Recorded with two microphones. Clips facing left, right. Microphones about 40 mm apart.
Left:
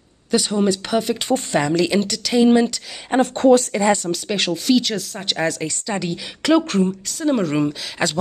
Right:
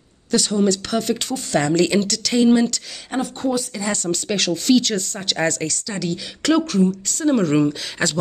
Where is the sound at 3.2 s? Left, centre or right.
Left.